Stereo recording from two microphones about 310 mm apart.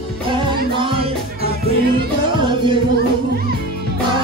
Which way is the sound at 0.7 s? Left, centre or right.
Centre.